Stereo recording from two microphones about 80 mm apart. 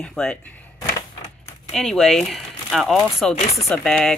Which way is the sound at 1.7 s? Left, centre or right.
Centre.